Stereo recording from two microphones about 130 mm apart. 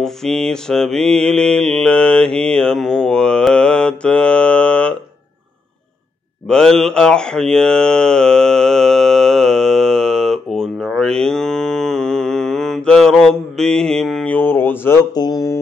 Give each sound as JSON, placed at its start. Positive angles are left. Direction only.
{"t": 0.0, "sound": "mantra", "side_deg": 5}
{"t": 6.4, "sound": "mantra", "side_deg": 5}
{"t": 14.3, "sound": "a sound", "side_deg": 15}